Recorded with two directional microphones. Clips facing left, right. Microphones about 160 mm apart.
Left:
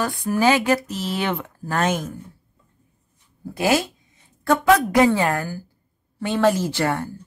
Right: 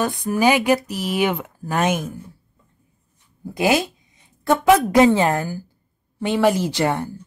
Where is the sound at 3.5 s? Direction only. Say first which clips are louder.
Right 1 dB; 20° right (ahead or behind).